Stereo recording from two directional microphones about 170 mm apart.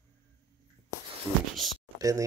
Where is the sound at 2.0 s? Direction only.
20° right (ahead or behind).